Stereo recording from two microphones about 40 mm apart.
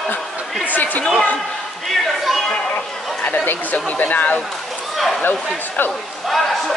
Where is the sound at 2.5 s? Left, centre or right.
Left.